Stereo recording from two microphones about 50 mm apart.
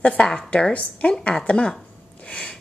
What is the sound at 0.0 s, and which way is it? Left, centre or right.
A woman's voice, left.